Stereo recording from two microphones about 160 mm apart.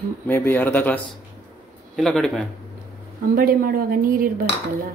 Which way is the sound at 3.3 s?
65° right (ahead or behind).